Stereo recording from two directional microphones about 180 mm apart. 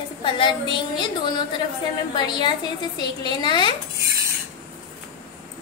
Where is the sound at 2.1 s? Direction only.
25° left (ahead or behind).